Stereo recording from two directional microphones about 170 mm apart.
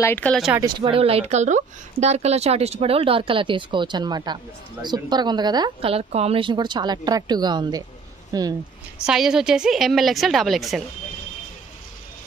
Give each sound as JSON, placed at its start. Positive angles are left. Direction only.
{"t": 0.0, "sound": "speech", "side_deg": 10}
{"t": 0.6, "sound": "a woman's voice", "side_deg": -25}
{"t": 9.0, "sound": "a woman's voice", "side_deg": -5}